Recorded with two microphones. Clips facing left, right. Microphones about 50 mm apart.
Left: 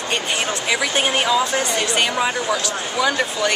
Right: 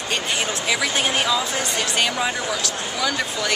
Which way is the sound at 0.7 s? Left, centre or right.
Centre.